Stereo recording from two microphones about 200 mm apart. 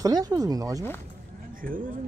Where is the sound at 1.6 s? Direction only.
45° right (ahead or behind).